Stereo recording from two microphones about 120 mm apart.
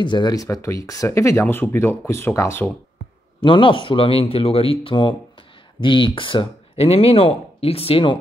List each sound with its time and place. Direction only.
0.0 s speech: 40° left (ahead or behind); by 2.6 s 20° left (ahead or behind)
3.4 s speech: 45° left (ahead or behind)